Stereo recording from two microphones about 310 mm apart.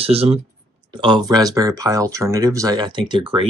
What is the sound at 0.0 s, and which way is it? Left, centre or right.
Speech, centre.